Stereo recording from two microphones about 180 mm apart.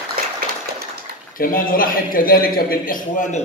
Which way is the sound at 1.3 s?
50° left (ahead or behind).